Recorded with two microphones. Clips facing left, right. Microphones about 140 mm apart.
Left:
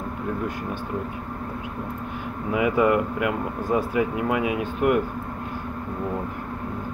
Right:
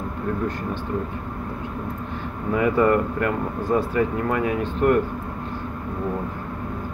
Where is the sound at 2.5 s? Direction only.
10° left (ahead or behind).